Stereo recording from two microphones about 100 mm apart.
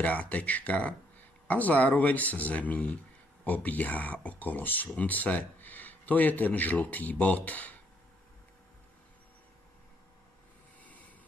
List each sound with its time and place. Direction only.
0.0 s speech: 15° left (ahead or behind)